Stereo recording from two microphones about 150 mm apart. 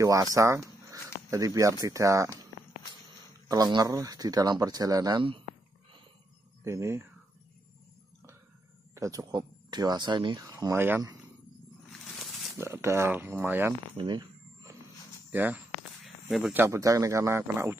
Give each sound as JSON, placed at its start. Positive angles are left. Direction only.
{"t": 0.0, "sound": "speech", "side_deg": -20}
{"t": 3.4, "sound": "speech", "side_deg": -25}
{"t": 6.6, "sound": "speech", "side_deg": -20}
{"t": 8.9, "sound": "speech", "side_deg": -20}
{"t": 11.9, "sound": "a sound", "side_deg": 0}
{"t": 12.5, "sound": "speech", "side_deg": -15}
{"t": 13.9, "sound": "a sound", "side_deg": -30}
{"t": 15.3, "sound": "speech", "side_deg": -10}
{"t": 16.0, "sound": "a sound", "side_deg": 0}
{"t": 16.5, "sound": "speech", "side_deg": -20}